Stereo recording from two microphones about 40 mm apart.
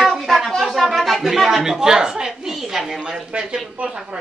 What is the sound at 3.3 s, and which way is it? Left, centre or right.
Speech, centre.